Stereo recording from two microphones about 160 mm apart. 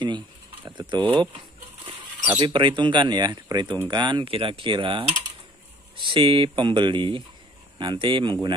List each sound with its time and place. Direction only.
0.7 s speech: 30° right (ahead or behind)